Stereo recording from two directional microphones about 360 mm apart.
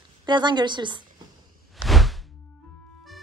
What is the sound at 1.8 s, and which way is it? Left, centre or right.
Whoosh, centre.